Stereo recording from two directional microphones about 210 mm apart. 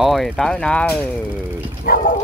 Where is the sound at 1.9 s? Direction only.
45° left (ahead or behind).